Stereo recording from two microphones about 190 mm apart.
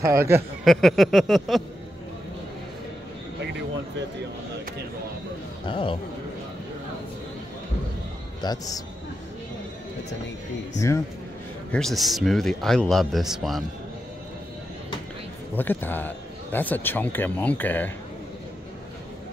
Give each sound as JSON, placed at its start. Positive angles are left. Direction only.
{"t": 0.0, "sound": "speech", "side_deg": -15}
{"t": 0.7, "sound": "speech", "side_deg": 0}
{"t": 5.7, "sound": "a man's voice", "side_deg": 25}
{"t": 8.4, "sound": "a man's voice", "side_deg": 20}
{"t": 11.7, "sound": "speech", "side_deg": 0}
{"t": 15.5, "sound": "speech", "side_deg": 10}